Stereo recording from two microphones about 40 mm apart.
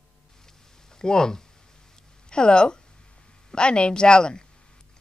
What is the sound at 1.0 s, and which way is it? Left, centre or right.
A woman's voice, centre.